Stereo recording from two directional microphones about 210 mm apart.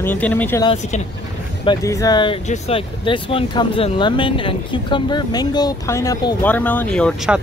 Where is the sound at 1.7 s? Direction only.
15° left (ahead or behind); by 7.4 s centre (ahead or behind).